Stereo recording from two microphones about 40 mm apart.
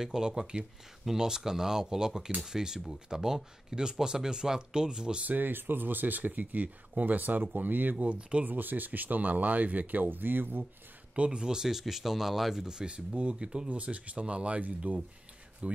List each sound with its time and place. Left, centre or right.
0.0 s speech: centre
5.2 s speech: right
8.2 s speech: right
8.5 s speech: right
11.1 s speech: right; by 12.6 s centre
12.6 s speech: right
13.7 s speech: right
14.9 s speech: right
15.6 s speech: right